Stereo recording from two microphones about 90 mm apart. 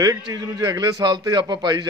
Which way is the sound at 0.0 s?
45° right (ahead or behind).